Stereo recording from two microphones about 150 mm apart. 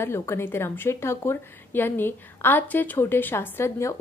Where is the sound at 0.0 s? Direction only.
15° left (ahead or behind).